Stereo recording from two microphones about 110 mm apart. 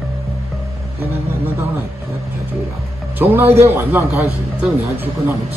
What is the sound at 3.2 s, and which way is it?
A man's voice, 20° right (ahead or behind).